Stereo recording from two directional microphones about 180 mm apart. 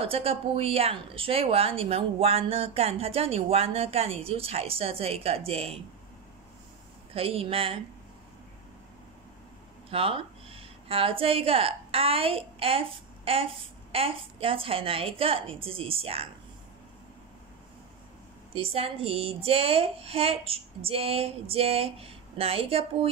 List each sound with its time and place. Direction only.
0.0 s speech: 30° right (ahead or behind)
7.2 s speech: 30° right (ahead or behind)
9.8 s a woman's voice: 30° right (ahead or behind)
18.5 s speech: 30° right (ahead or behind)